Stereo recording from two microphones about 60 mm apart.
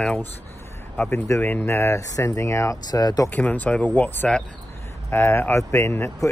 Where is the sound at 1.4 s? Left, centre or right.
Left.